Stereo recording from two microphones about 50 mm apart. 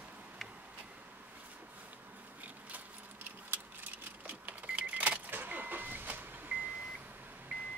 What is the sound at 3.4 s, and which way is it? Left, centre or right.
Keys jangling, right.